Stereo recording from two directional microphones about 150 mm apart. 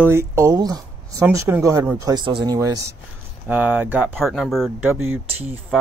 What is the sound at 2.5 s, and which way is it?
Speech, 20° right (ahead or behind).